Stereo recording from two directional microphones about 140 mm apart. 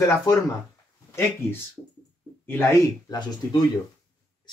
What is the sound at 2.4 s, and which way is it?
Speech, 15° left (ahead or behind).